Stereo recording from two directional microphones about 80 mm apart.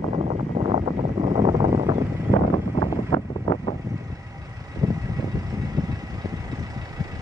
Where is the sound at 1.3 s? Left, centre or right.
Right.